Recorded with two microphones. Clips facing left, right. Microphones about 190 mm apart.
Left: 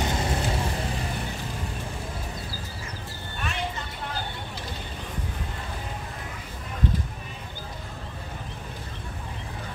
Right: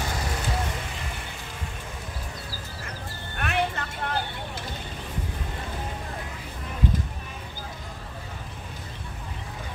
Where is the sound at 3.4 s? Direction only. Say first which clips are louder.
Right 5 dB; 60° right (ahead or behind).